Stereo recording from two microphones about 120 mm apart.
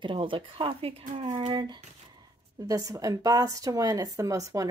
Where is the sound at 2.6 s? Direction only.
30° right (ahead or behind).